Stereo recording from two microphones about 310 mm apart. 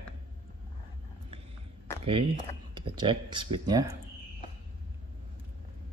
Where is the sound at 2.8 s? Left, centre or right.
Centre.